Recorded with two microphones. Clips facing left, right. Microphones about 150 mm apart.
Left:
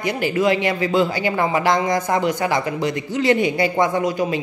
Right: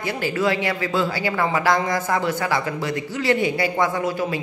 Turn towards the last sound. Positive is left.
turn(degrees=20)  # may be behind; listen again after turning